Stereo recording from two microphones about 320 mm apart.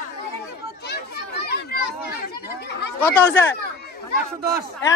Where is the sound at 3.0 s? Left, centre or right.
Centre.